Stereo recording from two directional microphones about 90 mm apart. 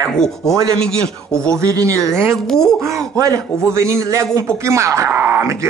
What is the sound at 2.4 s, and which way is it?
Speech, 5° left (ahead or behind).